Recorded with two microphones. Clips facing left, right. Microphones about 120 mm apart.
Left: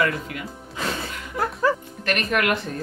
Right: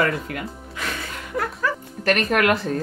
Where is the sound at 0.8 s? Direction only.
30° left (ahead or behind).